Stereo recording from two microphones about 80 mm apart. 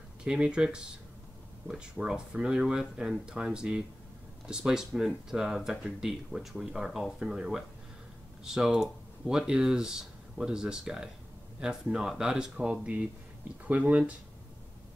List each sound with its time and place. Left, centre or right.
0.2 s speech: centre